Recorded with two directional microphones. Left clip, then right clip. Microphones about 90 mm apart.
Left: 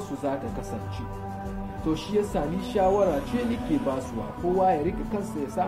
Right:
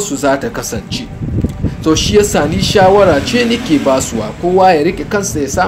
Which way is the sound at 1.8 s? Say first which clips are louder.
Right 16 dB; 25° left (ahead or behind).